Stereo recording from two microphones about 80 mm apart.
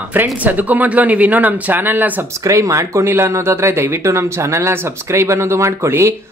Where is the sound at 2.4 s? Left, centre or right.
Right.